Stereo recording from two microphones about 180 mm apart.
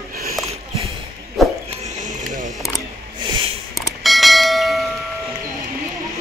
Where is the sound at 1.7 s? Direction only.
40° right (ahead or behind).